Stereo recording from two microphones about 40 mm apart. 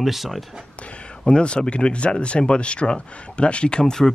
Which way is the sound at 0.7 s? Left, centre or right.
Left.